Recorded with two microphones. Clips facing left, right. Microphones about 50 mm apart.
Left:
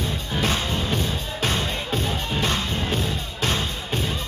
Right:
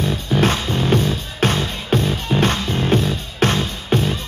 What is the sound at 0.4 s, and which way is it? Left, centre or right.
Music, right.